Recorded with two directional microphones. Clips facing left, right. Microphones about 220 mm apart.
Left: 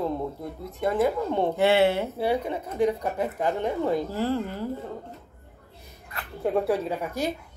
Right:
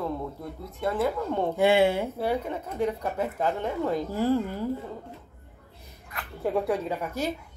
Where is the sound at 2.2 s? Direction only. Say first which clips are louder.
Left 2 dB; 10° left (ahead or behind).